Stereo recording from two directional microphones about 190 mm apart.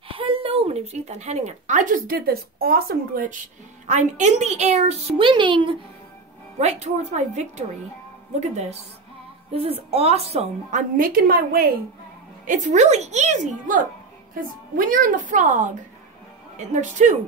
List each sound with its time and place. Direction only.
0.1 s a woman's voice: 30° right (ahead or behind); by 3.3 s 50° right (ahead or behind)
3.8 s a woman's voice: 40° right (ahead or behind)
6.6 s a woman's voice: 35° right (ahead or behind)
12.4 s a woman's voice: 40° right (ahead or behind)